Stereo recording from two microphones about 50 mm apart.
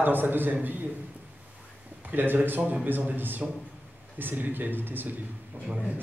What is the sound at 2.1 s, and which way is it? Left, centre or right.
A man's voice, right.